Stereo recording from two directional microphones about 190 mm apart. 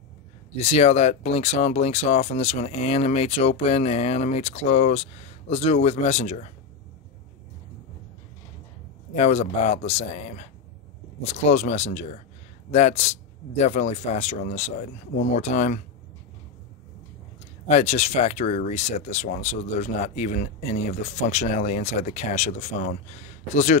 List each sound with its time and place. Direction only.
0.6 s speech: 30° left (ahead or behind)
9.1 s speech: 35° left (ahead or behind)
17.6 s speech: 35° left (ahead or behind)